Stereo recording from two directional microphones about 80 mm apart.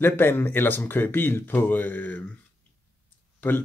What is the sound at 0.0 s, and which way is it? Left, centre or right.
Speech, left.